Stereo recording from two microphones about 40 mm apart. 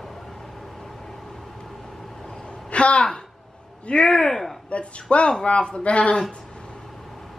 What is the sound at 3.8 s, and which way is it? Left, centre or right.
Speech, left.